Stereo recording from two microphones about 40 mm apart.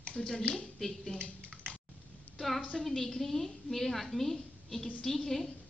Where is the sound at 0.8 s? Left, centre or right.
Centre.